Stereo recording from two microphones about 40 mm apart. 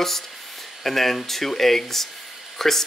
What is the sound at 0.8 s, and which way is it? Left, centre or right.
Speech, centre.